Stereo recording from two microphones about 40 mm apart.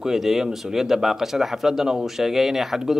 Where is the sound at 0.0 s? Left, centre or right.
Centre.